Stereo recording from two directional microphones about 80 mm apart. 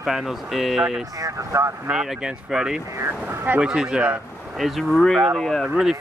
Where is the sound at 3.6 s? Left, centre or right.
Centre.